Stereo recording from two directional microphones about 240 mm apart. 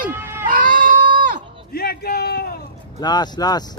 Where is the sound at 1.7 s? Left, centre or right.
Left.